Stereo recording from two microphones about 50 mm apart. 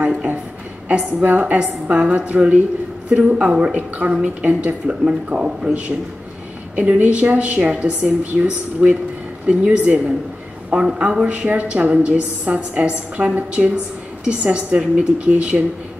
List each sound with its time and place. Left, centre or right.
0.8 s a woman's voice: right
4.8 s a woman's voice: centre
6.7 s a woman's voice: right
7.6 s a woman's voice: centre
8.2 s a woman's voice: right